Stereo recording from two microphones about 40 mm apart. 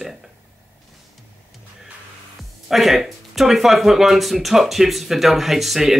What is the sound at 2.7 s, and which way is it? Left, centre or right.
Speech, centre.